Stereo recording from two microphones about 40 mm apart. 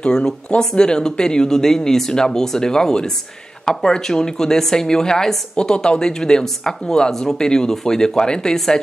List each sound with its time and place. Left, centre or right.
0.0 s a woman's voice: centre